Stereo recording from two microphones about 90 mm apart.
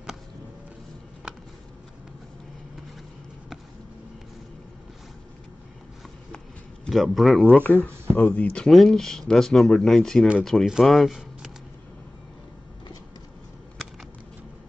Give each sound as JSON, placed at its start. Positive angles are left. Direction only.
{"t": 6.9, "sound": "speech", "side_deg": 0}
{"t": 7.5, "sound": "speech", "side_deg": 15}
{"t": 8.6, "sound": "speech", "side_deg": 5}